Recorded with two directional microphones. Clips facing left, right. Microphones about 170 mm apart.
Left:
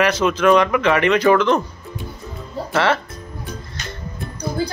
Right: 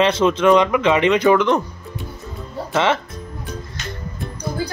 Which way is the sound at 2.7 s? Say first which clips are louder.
Even; 20° right (ahead or behind).